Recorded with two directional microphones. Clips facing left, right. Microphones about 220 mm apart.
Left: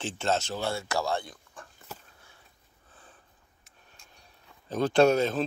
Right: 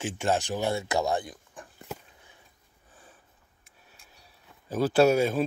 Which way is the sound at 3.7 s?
5° right (ahead or behind).